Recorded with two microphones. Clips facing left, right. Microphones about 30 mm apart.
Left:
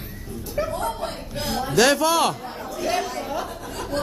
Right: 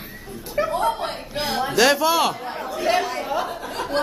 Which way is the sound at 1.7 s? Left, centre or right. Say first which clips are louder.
Even; centre.